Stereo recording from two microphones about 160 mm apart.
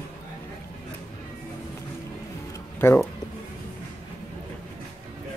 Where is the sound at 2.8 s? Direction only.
15° left (ahead or behind).